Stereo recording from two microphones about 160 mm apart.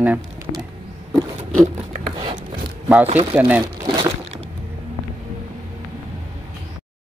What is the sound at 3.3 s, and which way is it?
Speech, 10° right (ahead or behind).